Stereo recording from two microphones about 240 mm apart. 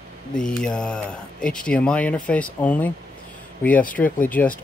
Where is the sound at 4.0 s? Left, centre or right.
Centre.